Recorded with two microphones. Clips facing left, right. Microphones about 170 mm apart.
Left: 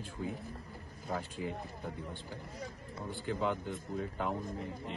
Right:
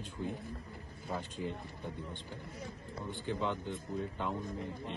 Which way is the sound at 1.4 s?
5° left (ahead or behind).